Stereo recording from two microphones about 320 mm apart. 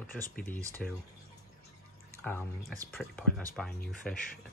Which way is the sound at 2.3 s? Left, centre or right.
Centre.